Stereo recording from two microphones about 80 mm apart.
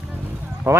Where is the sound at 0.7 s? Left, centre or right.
Right.